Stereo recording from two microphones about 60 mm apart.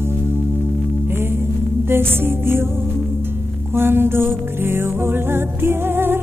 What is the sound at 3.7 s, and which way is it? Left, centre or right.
Music, right.